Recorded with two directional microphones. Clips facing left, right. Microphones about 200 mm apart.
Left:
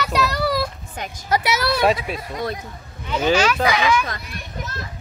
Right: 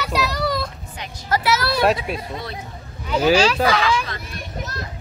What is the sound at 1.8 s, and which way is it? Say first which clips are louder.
Speech: even; centre (ahead or behind).